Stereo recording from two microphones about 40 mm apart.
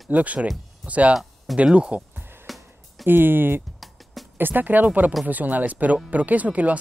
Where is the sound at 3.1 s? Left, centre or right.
Right.